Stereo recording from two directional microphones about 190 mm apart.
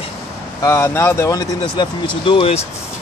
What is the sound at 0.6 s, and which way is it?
Speech, 15° left (ahead or behind).